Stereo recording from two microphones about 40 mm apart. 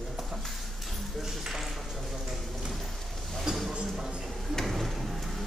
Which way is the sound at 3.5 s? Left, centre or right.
Centre.